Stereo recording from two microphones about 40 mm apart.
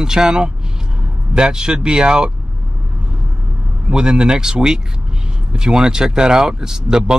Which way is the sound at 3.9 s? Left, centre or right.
Right.